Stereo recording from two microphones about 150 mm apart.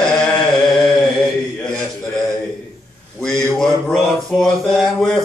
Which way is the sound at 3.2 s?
5° left (ahead or behind).